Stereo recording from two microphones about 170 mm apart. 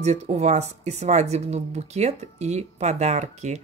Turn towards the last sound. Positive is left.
turn(degrees=-40)  # may be behind; listen again after turning